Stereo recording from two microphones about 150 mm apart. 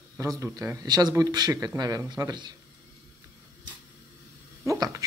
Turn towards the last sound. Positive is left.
turn(degrees=-20)  # may be behind; listen again after turning